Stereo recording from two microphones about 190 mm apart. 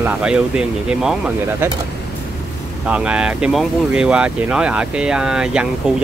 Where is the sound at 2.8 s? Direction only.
5° right (ahead or behind).